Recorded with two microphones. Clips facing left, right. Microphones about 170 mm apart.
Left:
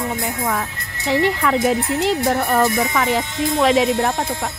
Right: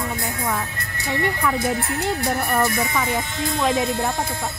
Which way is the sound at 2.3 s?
60° left (ahead or behind).